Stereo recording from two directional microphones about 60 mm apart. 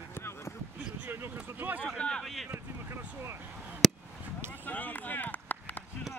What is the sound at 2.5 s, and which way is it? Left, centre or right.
Speech, right.